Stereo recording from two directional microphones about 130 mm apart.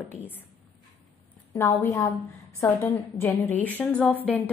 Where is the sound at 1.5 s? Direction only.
20° left (ahead or behind).